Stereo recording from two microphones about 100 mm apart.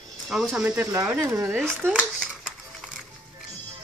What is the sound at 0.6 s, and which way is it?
Speech, 30° right (ahead or behind).